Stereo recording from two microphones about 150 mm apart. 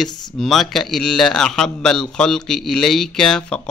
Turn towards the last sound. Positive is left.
turn(degrees=5)  # may be behind; listen again after turning